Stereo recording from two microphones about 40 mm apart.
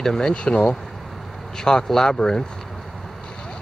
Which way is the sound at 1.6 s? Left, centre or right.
Centre.